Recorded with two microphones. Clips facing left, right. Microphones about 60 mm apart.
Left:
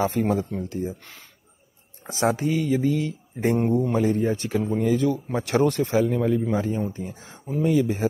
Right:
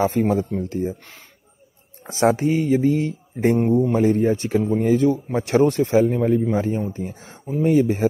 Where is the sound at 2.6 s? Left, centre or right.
Right.